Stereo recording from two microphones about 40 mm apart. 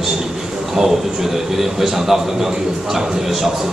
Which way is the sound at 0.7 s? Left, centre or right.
Centre.